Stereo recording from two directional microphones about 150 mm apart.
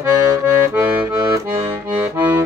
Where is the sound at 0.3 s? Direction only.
15° right (ahead or behind).